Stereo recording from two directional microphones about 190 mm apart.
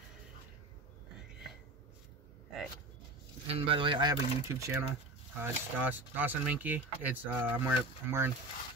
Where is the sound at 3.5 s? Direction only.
30° right (ahead or behind).